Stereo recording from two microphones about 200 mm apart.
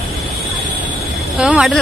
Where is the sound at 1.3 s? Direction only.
5° right (ahead or behind).